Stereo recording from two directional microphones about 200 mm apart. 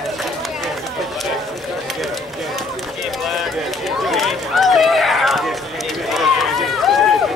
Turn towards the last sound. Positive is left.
turn(degrees=0)  # may be behind; listen again after turning